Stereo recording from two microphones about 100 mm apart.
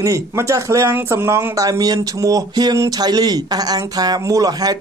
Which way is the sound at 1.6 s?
40° right (ahead or behind).